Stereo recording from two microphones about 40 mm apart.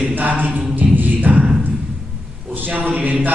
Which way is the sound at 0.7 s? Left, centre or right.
Right.